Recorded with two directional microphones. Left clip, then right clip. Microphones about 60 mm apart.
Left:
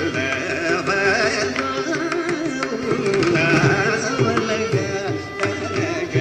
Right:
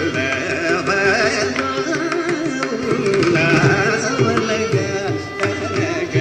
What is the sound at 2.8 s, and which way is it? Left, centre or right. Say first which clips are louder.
Carnatic music: right 2 dB; left.